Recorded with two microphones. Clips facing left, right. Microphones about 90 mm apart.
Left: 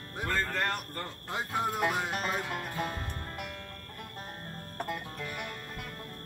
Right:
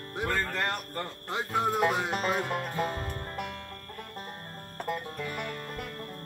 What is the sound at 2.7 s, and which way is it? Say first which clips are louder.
Music: right 4 dB; 40° right (ahead or behind).